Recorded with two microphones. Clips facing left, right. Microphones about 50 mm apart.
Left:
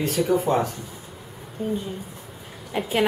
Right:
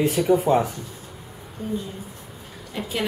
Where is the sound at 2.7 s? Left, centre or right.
Left.